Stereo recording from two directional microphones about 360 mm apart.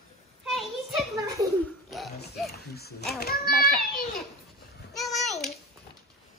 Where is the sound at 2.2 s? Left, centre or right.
Left.